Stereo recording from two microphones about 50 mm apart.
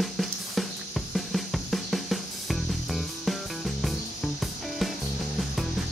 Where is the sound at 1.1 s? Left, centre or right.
Centre.